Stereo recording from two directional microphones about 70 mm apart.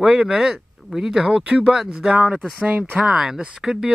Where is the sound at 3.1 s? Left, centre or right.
Centre.